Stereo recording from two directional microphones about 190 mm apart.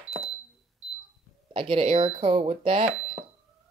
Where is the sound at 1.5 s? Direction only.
30° right (ahead or behind).